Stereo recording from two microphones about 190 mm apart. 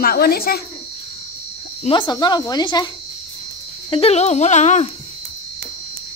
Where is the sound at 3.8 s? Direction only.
30° left (ahead or behind).